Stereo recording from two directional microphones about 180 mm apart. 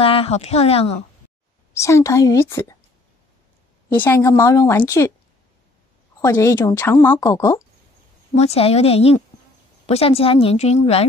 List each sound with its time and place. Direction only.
0.0 s a woman's voice: 30° left (ahead or behind)
1.7 s a woman's voice: 15° left (ahead or behind)
3.9 s a woman's voice: 10° left (ahead or behind)
6.2 s a woman's voice: 15° left (ahead or behind)
8.4 s a woman's voice: 35° left (ahead or behind)